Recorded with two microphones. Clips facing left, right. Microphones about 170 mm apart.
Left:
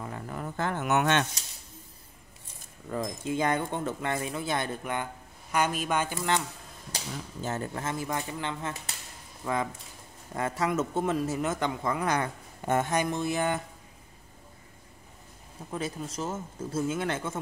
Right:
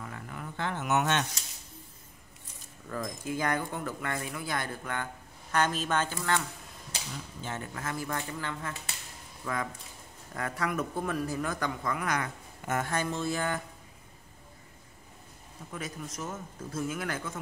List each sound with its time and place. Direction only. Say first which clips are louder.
0.0 s speech: left 5 dB; 35° left (ahead or behind); by 1.2 s 60° left (ahead or behind)
2.9 s speech: left 3 dB; 25° left (ahead or behind)
7.4 s speech: left 6 dB; 40° left (ahead or behind)
7.8 s speech: left 3 dB; 20° left (ahead or behind)
12.9 s a sound: left 3 dB; 15° left (ahead or behind)
15.7 s speech: left 5 dB; 30° left (ahead or behind)